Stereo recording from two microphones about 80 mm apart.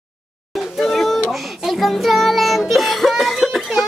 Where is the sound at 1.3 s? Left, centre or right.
Centre.